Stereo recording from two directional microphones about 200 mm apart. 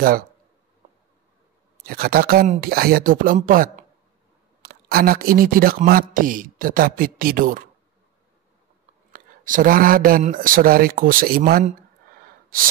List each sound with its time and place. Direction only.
1.8 s speech: 50° right (ahead or behind)
9.1 s speech: 40° right (ahead or behind)